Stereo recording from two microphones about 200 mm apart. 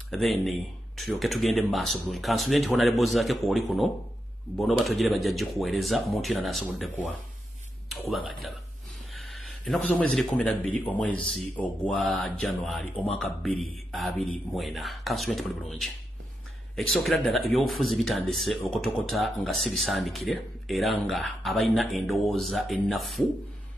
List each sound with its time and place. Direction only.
0.1 s speech: centre (ahead or behind)
9.2 s a man's voice: centre (ahead or behind)